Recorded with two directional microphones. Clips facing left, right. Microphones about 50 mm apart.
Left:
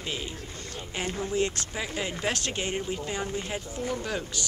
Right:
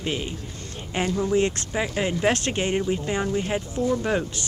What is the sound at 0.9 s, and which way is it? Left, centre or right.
Speech, right.